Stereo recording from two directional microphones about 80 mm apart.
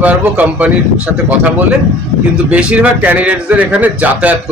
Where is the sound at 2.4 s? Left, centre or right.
Centre.